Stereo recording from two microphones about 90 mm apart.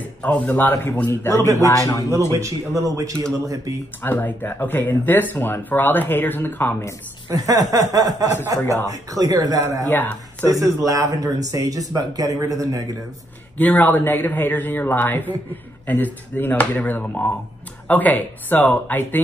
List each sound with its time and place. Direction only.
0.2 s speech: 20° left (ahead or behind)
1.6 s a man's voice: 35° left (ahead or behind)
2.3 s speech: 35° right (ahead or behind)
4.0 s speech: 25° left (ahead or behind)
7.2 s speech: 40° right (ahead or behind)
9.8 s speech: 20° left (ahead or behind)
10.9 s speech: 40° right (ahead or behind)
13.6 s speech: 20° left (ahead or behind)